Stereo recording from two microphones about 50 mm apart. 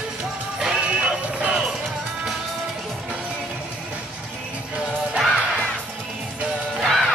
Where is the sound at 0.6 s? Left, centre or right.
Centre.